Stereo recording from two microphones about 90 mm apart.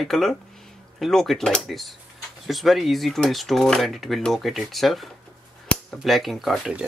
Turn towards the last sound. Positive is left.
turn(degrees=0)  # may be behind; listen again after turning